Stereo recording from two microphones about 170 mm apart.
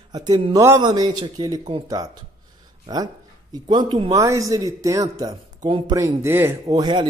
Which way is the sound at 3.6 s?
30° right (ahead or behind).